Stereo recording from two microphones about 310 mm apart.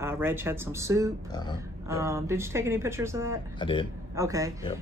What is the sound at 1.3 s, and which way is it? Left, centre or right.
Speech, centre.